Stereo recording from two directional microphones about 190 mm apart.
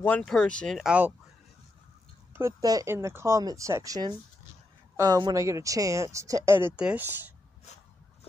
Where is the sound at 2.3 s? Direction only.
15° right (ahead or behind).